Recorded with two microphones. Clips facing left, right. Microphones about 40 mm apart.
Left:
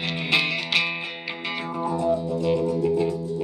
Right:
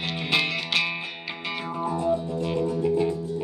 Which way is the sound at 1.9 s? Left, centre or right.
Centre.